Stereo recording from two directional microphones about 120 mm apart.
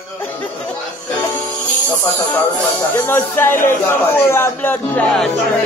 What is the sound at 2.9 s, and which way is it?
Speech, 20° left (ahead or behind).